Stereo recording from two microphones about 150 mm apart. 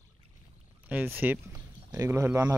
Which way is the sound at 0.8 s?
10° right (ahead or behind).